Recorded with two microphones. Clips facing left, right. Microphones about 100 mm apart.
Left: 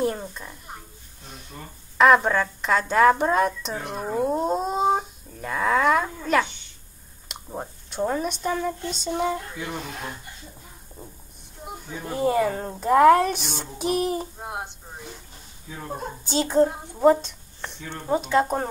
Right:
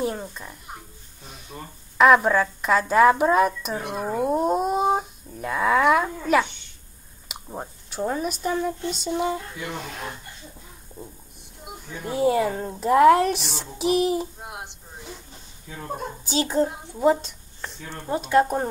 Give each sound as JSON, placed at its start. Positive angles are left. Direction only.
{"t": 0.0, "sound": "a woman's voice", "side_deg": 0}
{"t": 7.2, "sound": "clicking", "side_deg": -5}
{"t": 8.0, "sound": "a woman's voice", "side_deg": 0}
{"t": 12.0, "sound": "a woman's voice", "side_deg": -5}
{"t": 14.4, "sound": "a woman's voice", "side_deg": 30}
{"t": 16.3, "sound": "a child's voice", "side_deg": -5}